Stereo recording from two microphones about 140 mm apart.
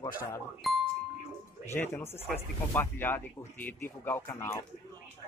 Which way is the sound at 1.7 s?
15° left (ahead or behind).